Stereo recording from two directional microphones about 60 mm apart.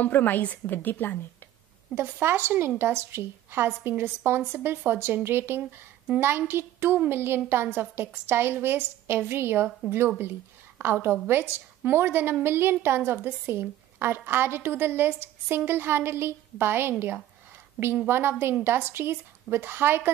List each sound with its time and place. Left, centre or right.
0.0 s a woman's voice: left
2.0 s a woman's voice: right
18.0 s a woman's voice: right